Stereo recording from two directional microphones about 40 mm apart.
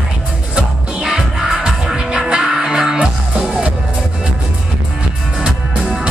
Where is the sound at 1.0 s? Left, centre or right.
Centre.